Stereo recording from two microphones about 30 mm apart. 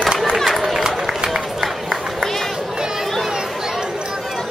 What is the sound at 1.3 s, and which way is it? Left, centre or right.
Run, centre.